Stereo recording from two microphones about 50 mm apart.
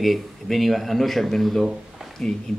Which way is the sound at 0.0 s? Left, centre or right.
Centre.